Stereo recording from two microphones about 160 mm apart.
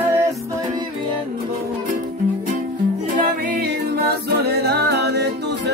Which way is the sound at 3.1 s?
60° right (ahead or behind).